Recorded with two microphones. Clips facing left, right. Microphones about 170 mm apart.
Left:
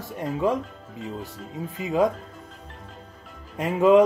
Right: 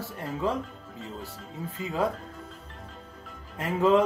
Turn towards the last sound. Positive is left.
turn(degrees=15)  # may be behind; listen again after turning